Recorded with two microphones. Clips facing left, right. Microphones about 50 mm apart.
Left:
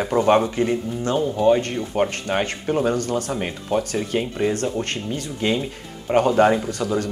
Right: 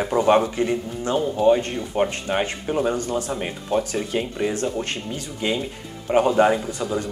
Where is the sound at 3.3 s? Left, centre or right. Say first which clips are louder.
Left 1 dB; centre.